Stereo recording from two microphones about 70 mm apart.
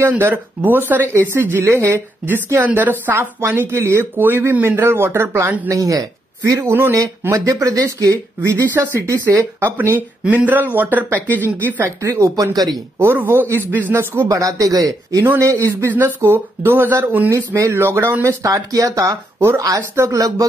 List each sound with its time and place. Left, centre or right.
0.1 s a woman's voice: right
5.7 s speech: right
6.6 s a woman's voice: right
6.9 s speech: right
9.6 s speech: right
12.0 s speech: right
13.0 s a woman's voice: right
14.3 s speech: right
15.2 s speech: right
16.2 s a woman's voice: right
17.3 s a woman's voice: right
18.4 s speech: right